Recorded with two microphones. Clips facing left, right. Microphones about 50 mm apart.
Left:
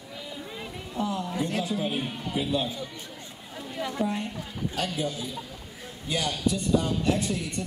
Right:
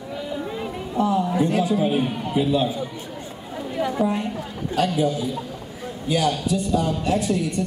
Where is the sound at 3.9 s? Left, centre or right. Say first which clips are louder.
Right 5 dB; centre.